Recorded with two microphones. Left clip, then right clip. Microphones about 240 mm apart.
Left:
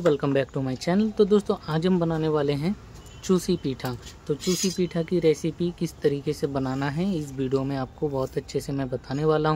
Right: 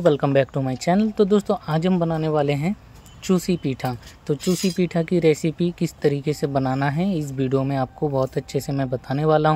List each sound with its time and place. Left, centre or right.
0.0 s speech: centre